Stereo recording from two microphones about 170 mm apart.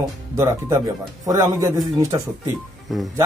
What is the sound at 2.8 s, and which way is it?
Speech, centre (ahead or behind).